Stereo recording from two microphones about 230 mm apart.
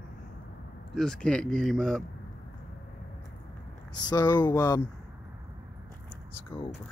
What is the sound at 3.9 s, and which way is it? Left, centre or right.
Speech, centre.